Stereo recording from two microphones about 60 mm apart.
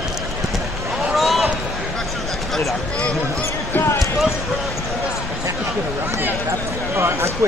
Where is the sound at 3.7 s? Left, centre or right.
Left.